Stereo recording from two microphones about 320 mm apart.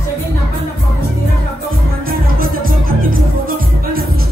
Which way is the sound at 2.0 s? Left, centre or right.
Right.